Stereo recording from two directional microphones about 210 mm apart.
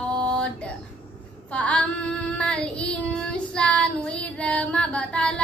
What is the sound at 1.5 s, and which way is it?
Child singing, 5° left (ahead or behind).